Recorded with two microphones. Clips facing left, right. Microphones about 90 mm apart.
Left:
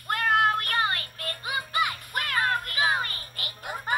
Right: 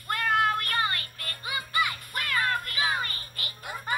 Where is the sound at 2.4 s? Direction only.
50° left (ahead or behind).